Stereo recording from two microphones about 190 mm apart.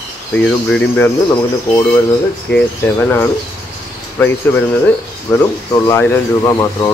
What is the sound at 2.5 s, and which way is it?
Speech, 10° left (ahead or behind).